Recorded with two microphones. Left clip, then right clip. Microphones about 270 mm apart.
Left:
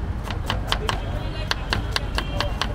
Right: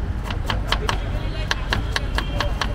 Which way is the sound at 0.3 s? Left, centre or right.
Centre.